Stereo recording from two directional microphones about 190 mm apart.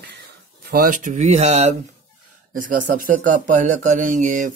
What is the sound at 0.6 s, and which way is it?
Speech, 50° right (ahead or behind).